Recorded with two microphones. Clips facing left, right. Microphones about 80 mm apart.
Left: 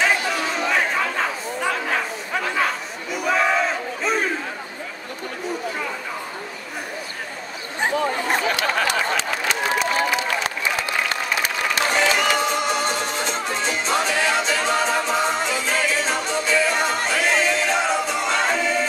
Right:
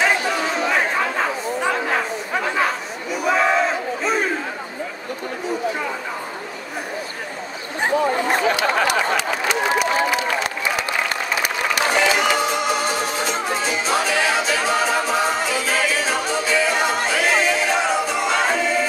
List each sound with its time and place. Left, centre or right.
0.0 s chatter: centre
8.0 s chatter: centre
8.8 s a sound: centre
9.8 s applause: centre
11.4 s music: centre